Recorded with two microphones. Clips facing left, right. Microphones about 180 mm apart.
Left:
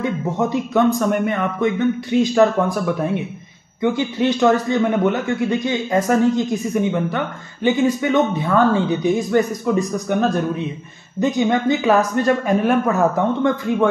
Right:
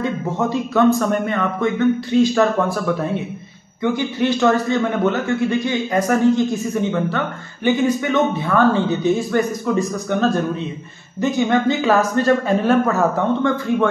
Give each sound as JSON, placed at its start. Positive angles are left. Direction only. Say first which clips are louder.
{"t": 0.0, "sound": "a man's voice", "louder": "even", "side_deg": 15}
{"t": 11.1, "sound": "a man's voice", "louder": "even", "side_deg": 20}